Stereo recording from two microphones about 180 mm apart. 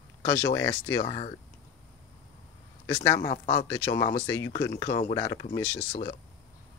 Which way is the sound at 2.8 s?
15° left (ahead or behind).